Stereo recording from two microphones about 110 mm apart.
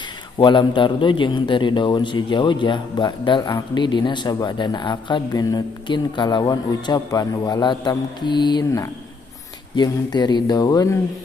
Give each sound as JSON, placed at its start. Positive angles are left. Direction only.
{"t": 0.4, "sound": "a man's voice", "side_deg": 45}
{"t": 9.8, "sound": "a man's voice", "side_deg": 40}